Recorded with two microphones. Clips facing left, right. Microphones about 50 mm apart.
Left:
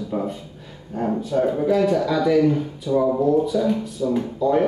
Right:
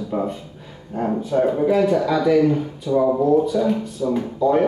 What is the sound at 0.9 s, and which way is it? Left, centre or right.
Speech, centre.